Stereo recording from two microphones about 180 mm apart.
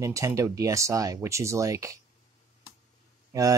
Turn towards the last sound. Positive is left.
turn(degrees=-20)  # may be behind; listen again after turning